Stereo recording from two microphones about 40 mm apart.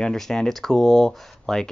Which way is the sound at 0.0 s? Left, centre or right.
Centre.